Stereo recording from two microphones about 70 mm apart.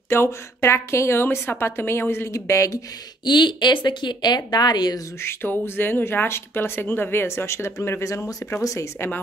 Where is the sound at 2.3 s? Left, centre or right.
Left.